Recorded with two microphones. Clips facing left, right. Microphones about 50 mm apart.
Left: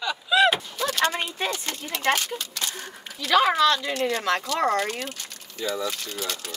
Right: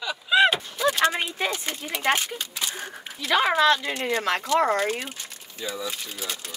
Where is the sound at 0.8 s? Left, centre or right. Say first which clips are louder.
Right 2 dB; centre.